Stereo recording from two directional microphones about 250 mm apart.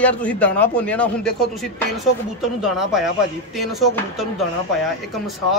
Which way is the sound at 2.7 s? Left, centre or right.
Centre.